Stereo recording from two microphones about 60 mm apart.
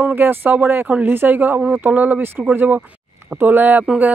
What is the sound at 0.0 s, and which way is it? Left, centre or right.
Speech, right.